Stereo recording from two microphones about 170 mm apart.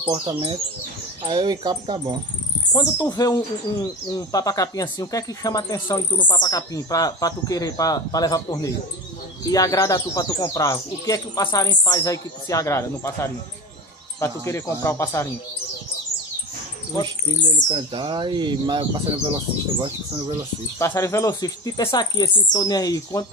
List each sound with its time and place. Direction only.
0.1 s speech: 30° right (ahead or behind)
2.7 s speech: 20° left (ahead or behind)
17.6 s speech: 30° right (ahead or behind)
20.8 s speech: 15° left (ahead or behind)